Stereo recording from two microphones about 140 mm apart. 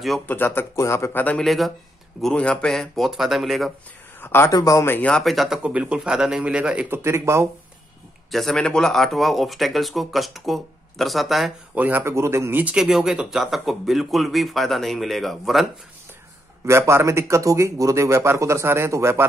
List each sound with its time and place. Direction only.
0.3 s speech: 15° left (ahead or behind); by 3.7 s centre (ahead or behind)
4.2 s speech: 15° left (ahead or behind); by 7.4 s 20° right (ahead or behind)
8.3 s speech: centre (ahead or behind)
16.6 s speech: 20° right (ahead or behind)